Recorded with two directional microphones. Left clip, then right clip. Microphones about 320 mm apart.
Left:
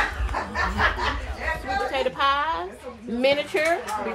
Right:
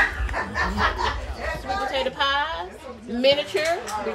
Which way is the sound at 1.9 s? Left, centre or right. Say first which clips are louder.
Left 1 dB; centre.